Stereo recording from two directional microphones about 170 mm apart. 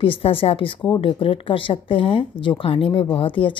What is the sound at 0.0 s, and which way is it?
A woman's voice, 35° left (ahead or behind).